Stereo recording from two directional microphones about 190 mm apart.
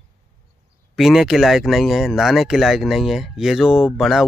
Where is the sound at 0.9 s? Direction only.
Centre (ahead or behind).